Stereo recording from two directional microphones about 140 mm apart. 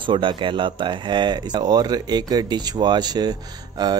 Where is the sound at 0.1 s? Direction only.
35° right (ahead or behind).